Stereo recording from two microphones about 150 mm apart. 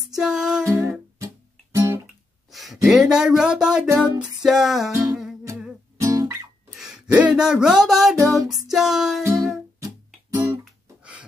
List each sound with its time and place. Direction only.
0.0 s music: 5° right (ahead or behind)
0.7 s music: 20° right (ahead or behind)
2.5 s speech: centre (ahead or behind)
4.0 s music: 5° right (ahead or behind)
5.5 s music: 20° right (ahead or behind)
6.8 s music: 5° right (ahead or behind)
9.2 s music: 20° right (ahead or behind)
10.6 s music: 5° right (ahead or behind)